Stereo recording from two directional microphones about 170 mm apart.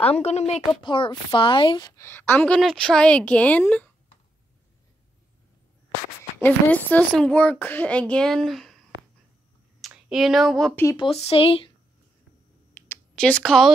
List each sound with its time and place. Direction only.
0.0 s speech: 40° left (ahead or behind)
0.8 s a woman's voice: 30° left (ahead or behind); by 3.9 s 10° left (ahead or behind)
6.4 s a woman's voice: 10° left (ahead or behind)
9.8 s a sound: centre (ahead or behind)
11.0 s speech: 35° left (ahead or behind)
12.7 s a sound: 15° left (ahead or behind)
13.1 s speech: 5° left (ahead or behind)